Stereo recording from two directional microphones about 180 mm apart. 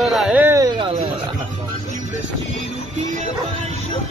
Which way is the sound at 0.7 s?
30° right (ahead or behind).